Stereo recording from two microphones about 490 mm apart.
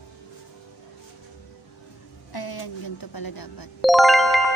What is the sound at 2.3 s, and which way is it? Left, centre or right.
A woman's voice, left.